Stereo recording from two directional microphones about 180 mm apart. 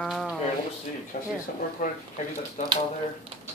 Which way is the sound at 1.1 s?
45° left (ahead or behind).